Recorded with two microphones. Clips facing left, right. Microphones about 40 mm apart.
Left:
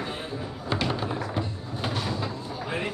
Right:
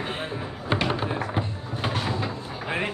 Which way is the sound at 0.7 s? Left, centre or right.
Right.